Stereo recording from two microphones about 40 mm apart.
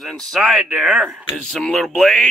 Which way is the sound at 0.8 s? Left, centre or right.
Right.